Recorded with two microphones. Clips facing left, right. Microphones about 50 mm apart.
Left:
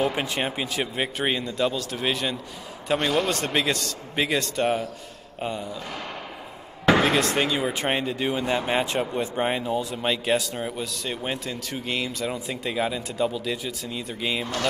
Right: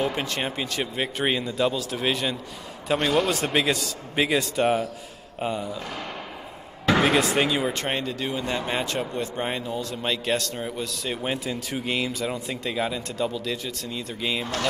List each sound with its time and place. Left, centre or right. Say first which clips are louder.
0.0 s speech: left 1 dB; centre
7.0 s speech: right 1 dB; centre
7.7 s speech: left 2 dB; centre